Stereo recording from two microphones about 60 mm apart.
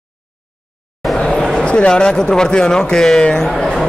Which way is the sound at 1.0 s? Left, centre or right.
Centre.